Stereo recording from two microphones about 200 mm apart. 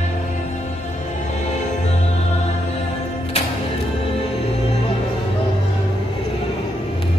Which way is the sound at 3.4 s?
30° left (ahead or behind).